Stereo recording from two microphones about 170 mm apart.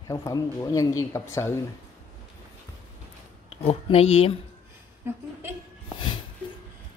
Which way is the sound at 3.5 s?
35° left (ahead or behind).